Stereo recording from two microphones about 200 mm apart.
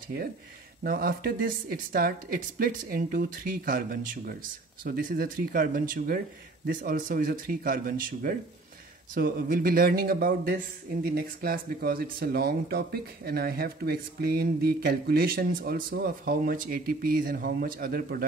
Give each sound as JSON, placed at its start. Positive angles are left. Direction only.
{"t": 0.8, "sound": "speech", "side_deg": -45}